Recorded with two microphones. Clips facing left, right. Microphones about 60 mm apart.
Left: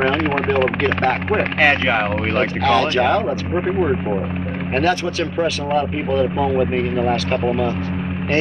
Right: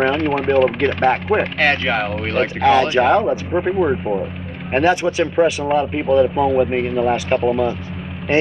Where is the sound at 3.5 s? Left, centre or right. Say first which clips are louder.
Even; centre.